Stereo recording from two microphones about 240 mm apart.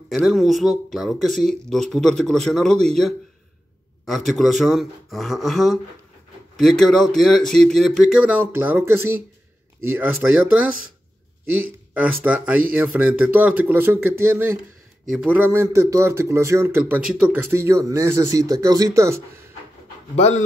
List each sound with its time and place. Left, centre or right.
0.1 s speech: centre
12.2 s speech: centre
20.2 s speech: left